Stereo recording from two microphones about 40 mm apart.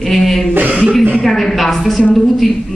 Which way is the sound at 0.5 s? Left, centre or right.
Right.